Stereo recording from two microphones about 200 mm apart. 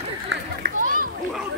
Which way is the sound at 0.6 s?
45° right (ahead or behind).